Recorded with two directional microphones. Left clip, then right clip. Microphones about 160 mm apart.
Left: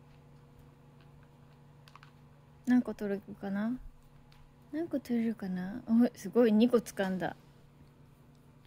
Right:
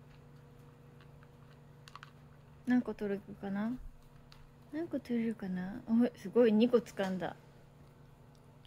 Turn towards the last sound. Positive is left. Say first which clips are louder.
# left 3 dB
turn(degrees=30)  # may be behind; listen again after turning